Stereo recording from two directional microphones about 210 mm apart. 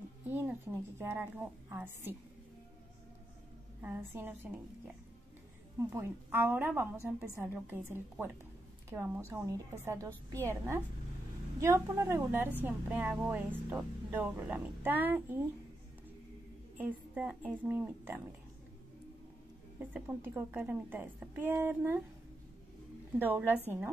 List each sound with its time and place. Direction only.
0.3 s speech: 10° right (ahead or behind)
3.8 s speech: 10° right (ahead or behind)
16.7 s speech: 5° right (ahead or behind)
19.8 s speech: 10° right (ahead or behind)
23.1 s speech: 10° right (ahead or behind)